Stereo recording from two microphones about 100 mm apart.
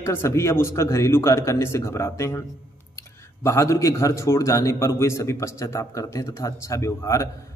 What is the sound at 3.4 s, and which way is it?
A man's voice, 30° left (ahead or behind).